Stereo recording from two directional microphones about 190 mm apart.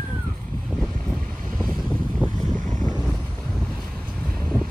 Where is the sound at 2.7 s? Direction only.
Centre (ahead or behind).